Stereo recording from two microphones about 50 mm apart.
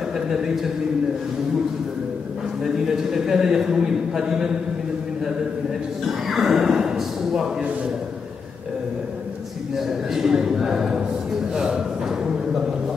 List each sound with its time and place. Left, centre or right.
2.6 s a man's voice: centre
6.0 s a man's voice: centre
9.8 s a man's voice: centre